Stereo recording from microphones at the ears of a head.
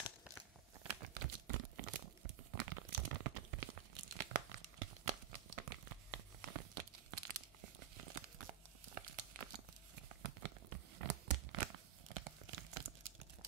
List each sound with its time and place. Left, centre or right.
0.8 s tearing: right